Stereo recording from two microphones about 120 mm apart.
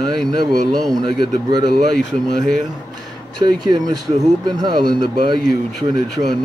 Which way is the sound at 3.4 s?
35° right (ahead or behind).